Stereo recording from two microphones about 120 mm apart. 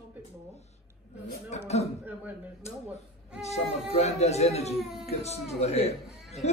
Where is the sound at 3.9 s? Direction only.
65° left (ahead or behind).